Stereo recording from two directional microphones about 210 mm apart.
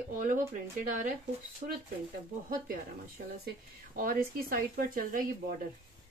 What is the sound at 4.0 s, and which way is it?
Speech, 45° right (ahead or behind).